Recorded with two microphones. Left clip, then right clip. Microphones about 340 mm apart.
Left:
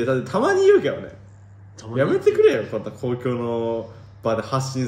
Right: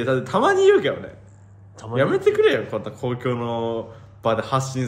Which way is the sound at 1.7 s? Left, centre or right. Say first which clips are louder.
Even; centre.